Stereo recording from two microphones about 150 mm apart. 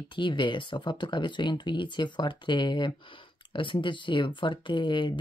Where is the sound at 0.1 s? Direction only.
30° left (ahead or behind).